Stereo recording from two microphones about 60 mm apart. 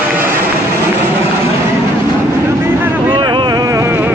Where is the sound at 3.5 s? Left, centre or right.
Right.